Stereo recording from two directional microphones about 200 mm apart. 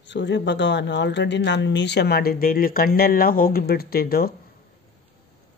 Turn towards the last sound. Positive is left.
turn(degrees=50)  # may be behind; listen again after turning